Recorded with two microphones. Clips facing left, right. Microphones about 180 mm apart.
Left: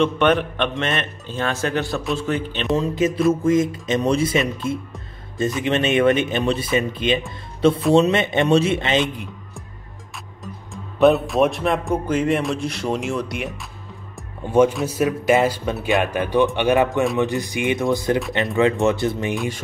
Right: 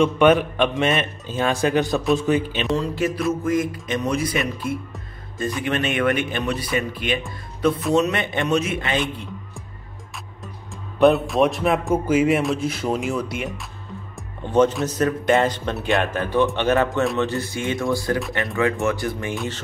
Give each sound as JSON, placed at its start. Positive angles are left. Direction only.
{"t": 0.0, "sound": "a man's voice", "side_deg": -10}
{"t": 2.7, "sound": "speech", "side_deg": 20}
{"t": 3.1, "sound": "speech", "side_deg": 0}
{"t": 3.4, "sound": "speech", "side_deg": 20}
{"t": 10.7, "sound": "speech", "side_deg": 0}
{"t": 14.4, "sound": "speech", "side_deg": 10}